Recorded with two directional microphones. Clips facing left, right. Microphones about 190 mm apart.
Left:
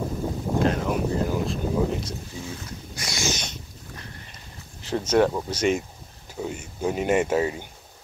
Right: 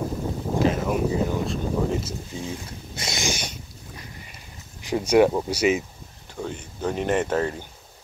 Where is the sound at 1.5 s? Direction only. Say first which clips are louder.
Even; centre (ahead or behind).